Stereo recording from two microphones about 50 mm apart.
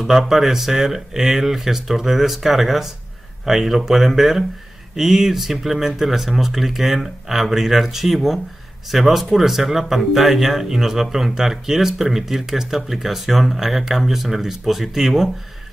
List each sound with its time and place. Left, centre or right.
0.0 s speech: centre